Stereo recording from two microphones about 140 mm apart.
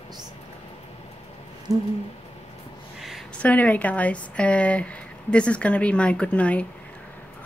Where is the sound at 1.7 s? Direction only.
25° right (ahead or behind).